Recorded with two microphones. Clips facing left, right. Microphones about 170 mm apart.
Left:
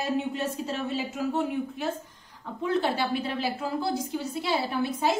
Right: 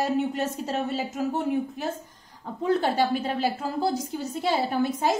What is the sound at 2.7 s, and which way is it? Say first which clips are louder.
A woman's voice: right 3 dB; 45° right (ahead or behind).